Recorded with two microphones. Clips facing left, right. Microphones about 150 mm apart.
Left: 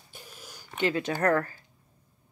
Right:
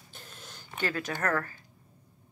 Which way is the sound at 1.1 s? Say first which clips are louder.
Left 6 dB; 35° left (ahead or behind).